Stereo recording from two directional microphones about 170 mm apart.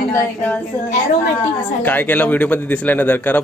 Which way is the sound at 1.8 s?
10° left (ahead or behind).